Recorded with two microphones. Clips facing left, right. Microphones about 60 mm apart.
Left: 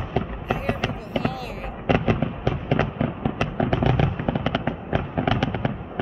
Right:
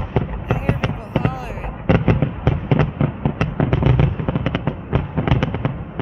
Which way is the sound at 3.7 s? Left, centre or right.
Centre.